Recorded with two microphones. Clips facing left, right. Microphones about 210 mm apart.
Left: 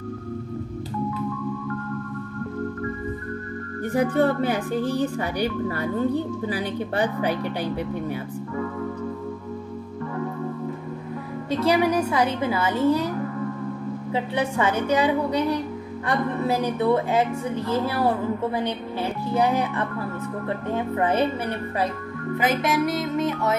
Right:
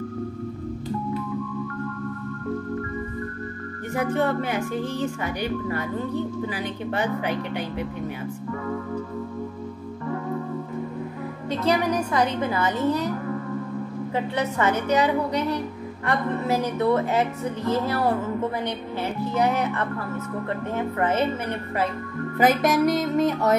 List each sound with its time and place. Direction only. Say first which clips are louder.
3.9 s speech: left 3 dB; 35° left (ahead or behind)
11.5 s a woman's voice: left 3 dB; 10° left (ahead or behind)
14.1 s a woman's voice: left 1 dB; 10° left (ahead or behind)
19.4 s a woman's voice: even; 15° left (ahead or behind)
22.4 s music: right 4 dB; 40° right (ahead or behind)